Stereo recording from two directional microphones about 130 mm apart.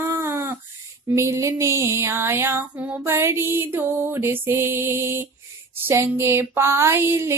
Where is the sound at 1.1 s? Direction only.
20° right (ahead or behind).